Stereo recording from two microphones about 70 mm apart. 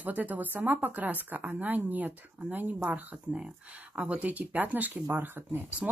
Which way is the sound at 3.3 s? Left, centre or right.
Centre.